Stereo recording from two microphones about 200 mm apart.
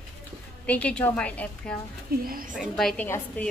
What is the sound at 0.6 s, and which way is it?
A woman's voice, 5° left (ahead or behind).